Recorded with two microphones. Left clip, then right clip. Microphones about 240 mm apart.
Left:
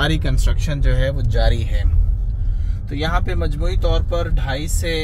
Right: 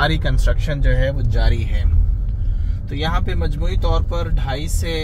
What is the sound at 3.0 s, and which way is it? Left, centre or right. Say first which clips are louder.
Speech: left 1 dB; centre.